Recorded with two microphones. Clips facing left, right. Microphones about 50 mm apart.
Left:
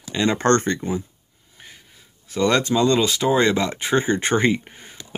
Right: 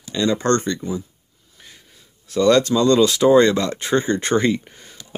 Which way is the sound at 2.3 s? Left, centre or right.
Centre.